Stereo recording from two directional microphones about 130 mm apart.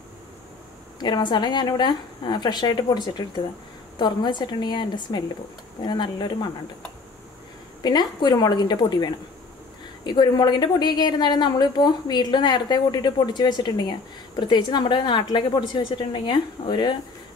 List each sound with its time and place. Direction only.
0.9 s a woman's voice: 35° left (ahead or behind)
7.8 s a woman's voice: 35° left (ahead or behind)